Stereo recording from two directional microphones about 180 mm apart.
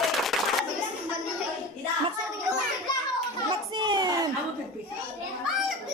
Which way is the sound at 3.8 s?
25° right (ahead or behind).